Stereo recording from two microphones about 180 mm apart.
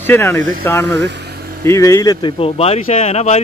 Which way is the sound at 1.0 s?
70° right (ahead or behind).